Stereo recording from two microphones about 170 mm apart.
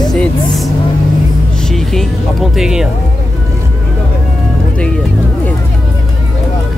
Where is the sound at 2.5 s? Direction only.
5° right (ahead or behind).